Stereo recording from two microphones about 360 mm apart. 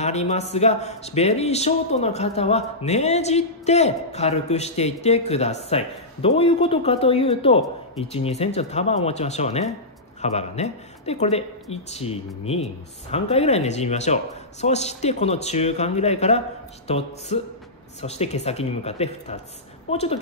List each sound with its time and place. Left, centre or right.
0.0 s speech: centre